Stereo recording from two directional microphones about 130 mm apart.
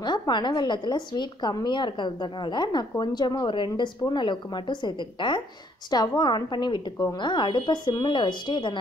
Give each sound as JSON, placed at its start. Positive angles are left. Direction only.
{"t": 0.0, "sound": "a woman's voice", "side_deg": 35}